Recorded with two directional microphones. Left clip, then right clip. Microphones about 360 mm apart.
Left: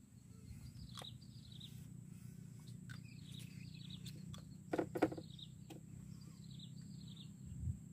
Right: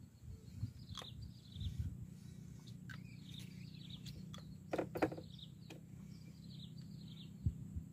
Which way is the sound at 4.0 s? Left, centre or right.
Centre.